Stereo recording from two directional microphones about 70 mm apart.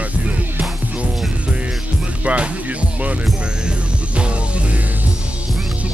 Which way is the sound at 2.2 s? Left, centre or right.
Centre.